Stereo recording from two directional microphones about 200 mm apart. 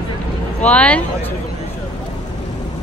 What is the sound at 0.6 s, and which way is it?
Speech, 5° left (ahead or behind).